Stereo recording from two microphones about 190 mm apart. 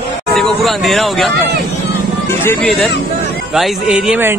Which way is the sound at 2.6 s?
Centre (ahead or behind).